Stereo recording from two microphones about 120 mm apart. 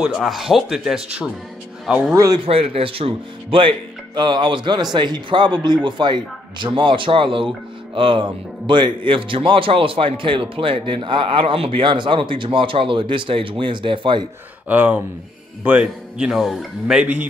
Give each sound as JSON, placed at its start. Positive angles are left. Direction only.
{"t": 0.0, "sound": "speech", "side_deg": 0}
{"t": 2.1, "sound": "a man's voice", "side_deg": -30}
{"t": 2.4, "sound": "speech", "side_deg": -50}
{"t": 14.7, "sound": "speech", "side_deg": -15}